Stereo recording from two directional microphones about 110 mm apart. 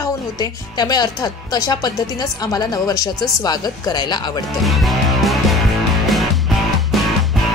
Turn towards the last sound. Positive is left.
turn(degrees=0)  # may be behind; listen again after turning